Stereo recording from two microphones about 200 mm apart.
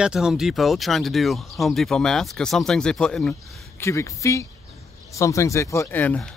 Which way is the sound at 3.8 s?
15° left (ahead or behind).